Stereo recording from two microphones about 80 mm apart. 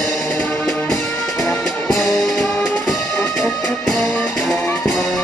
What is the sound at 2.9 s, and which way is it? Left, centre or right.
Music, left.